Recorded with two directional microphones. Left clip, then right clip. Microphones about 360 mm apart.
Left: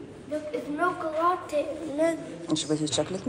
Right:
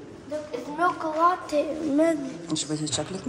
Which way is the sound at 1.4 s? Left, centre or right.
Right.